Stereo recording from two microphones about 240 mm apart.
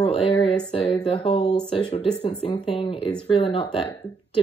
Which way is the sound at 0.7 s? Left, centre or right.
Left.